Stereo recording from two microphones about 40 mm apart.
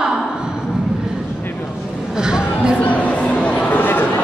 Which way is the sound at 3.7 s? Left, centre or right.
Left.